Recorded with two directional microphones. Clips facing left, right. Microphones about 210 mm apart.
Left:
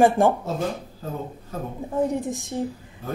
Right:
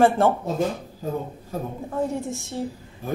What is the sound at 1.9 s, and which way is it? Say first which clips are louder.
Speech: left 4 dB; 15° left (ahead or behind).